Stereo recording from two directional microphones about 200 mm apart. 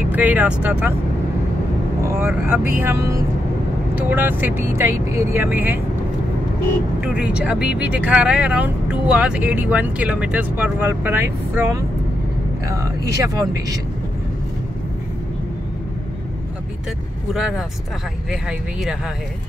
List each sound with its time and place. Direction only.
0.1 s speech: 10° right (ahead or behind)
2.0 s speech: 10° right (ahead or behind)
7.0 s speech: 5° right (ahead or behind)
17.3 s speech: 5° right (ahead or behind)